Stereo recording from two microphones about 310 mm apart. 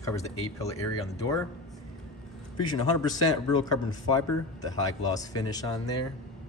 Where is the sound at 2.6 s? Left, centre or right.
Centre.